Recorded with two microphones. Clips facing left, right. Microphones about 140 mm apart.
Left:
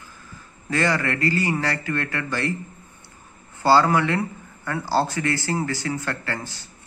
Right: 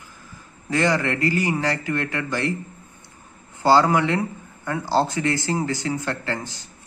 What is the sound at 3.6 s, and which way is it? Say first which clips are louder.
Speech: right 1 dB; 20° right (ahead or behind).